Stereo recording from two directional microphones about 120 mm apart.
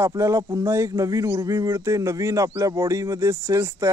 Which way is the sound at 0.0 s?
25° right (ahead or behind).